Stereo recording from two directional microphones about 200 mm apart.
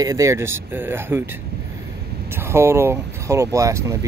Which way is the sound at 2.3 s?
10° right (ahead or behind).